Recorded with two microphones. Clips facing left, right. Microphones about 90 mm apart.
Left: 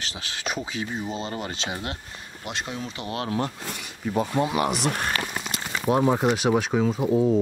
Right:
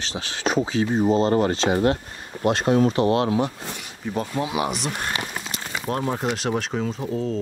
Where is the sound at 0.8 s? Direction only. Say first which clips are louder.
Right 11 dB; 40° right (ahead or behind).